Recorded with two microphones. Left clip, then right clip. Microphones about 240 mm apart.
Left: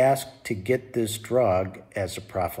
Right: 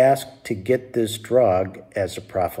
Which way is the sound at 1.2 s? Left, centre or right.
Centre.